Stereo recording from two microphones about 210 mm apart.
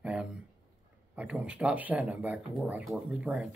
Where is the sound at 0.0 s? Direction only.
5° right (ahead or behind).